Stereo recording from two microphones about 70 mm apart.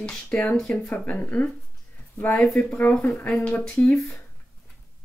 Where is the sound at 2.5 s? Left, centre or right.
Centre.